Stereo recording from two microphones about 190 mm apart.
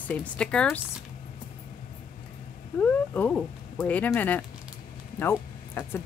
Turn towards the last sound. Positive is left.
turn(degrees=10)  # may be behind; listen again after turning